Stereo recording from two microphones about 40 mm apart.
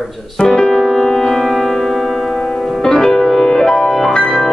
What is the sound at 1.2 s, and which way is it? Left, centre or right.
Music, centre.